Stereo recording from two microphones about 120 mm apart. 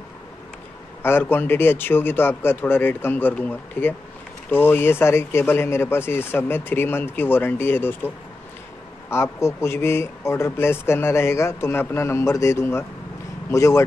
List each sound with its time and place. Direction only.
1.0 s a man's voice: 20° left (ahead or behind)
9.1 s speech: 20° left (ahead or behind)